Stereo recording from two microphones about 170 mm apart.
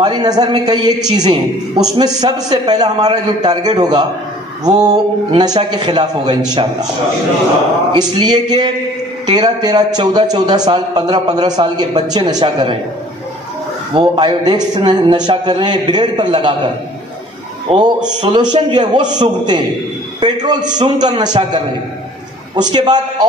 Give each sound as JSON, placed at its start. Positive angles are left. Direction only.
{"t": 0.0, "sound": "a man's voice", "side_deg": -25}
{"t": 7.9, "sound": "a man's voice", "side_deg": -25}
{"t": 13.9, "sound": "a man's voice", "side_deg": -25}
{"t": 22.6, "sound": "a man's voice", "side_deg": -25}